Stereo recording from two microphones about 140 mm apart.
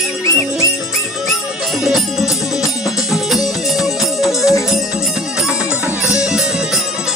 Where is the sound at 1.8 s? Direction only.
Centre (ahead or behind).